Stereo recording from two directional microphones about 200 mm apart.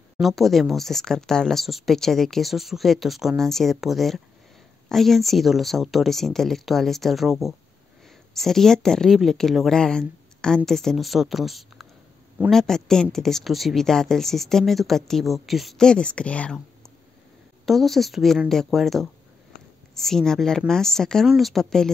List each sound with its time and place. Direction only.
0.2 s speech: centre (ahead or behind)
17.6 s speech: centre (ahead or behind)